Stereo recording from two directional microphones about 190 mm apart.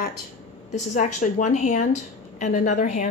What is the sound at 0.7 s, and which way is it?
A woman's voice, 40° left (ahead or behind).